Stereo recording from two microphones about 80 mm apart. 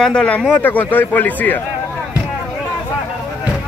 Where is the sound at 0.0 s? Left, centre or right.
Centre.